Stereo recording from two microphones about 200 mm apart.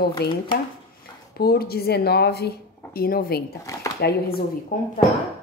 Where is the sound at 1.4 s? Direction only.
50° left (ahead or behind).